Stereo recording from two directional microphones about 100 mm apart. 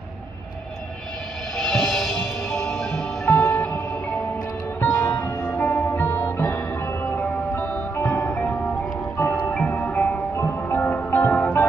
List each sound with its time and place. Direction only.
1.6 s music: 5° left (ahead or behind)
4.7 s music: 20° left (ahead or behind)